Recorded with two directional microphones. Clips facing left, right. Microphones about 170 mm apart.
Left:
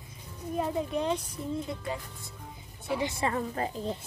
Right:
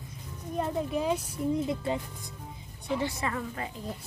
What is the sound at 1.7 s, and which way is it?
Speech, 20° right (ahead or behind).